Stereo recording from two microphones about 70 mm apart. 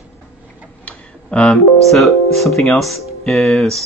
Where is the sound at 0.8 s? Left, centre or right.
Centre.